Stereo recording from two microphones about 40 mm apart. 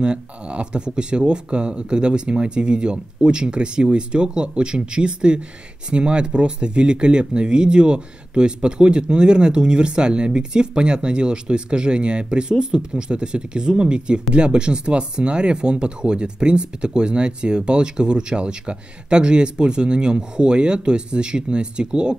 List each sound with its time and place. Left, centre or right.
0.0 s speech: right